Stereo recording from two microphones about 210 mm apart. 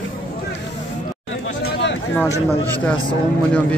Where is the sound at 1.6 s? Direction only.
60° left (ahead or behind).